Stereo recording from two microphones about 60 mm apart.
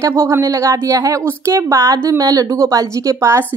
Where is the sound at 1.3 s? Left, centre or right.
Right.